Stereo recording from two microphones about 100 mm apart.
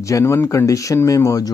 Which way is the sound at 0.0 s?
30° left (ahead or behind).